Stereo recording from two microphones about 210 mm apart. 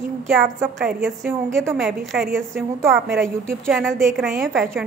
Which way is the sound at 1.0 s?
10° right (ahead or behind).